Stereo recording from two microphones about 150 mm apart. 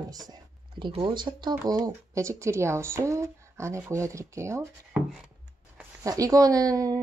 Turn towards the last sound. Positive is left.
turn(degrees=-25)  # may be behind; listen again after turning